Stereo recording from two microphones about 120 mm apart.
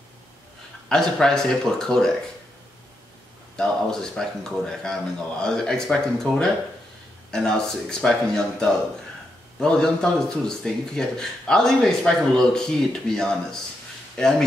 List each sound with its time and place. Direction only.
0.8 s speech: 5° left (ahead or behind)
3.5 s speech: 5° left (ahead or behind)